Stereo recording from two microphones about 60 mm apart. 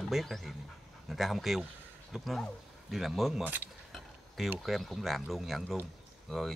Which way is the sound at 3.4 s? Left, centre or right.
Right.